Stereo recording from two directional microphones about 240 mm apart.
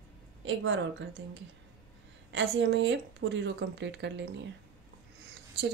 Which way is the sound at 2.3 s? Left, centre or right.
Right.